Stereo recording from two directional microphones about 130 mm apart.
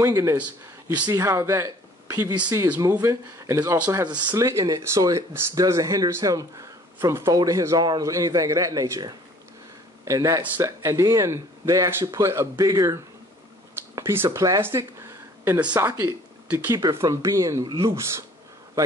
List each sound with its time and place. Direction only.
0.0 s speech: 25° right (ahead or behind)
0.4 s speech: 10° right (ahead or behind)
1.0 s speech: 25° right (ahead or behind)